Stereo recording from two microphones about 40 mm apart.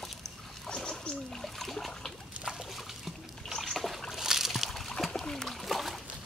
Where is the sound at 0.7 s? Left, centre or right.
Left.